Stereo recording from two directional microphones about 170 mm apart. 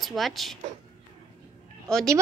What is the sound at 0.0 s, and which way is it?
Speech, centre (ahead or behind).